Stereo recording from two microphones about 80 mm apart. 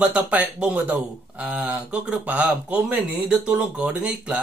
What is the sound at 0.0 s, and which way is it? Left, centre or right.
Speech, centre.